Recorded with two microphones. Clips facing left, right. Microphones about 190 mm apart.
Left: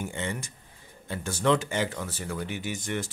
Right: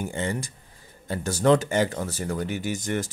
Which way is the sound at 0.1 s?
40° right (ahead or behind).